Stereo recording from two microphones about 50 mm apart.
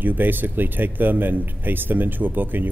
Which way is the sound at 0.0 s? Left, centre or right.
Right.